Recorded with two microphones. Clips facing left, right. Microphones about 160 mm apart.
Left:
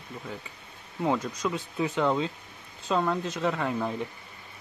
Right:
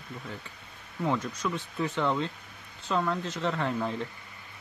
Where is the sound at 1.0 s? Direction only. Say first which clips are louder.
Left 2 dB; 15° left (ahead or behind).